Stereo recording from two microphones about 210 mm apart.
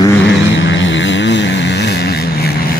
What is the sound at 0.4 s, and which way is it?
Vehicle, 60° left (ahead or behind).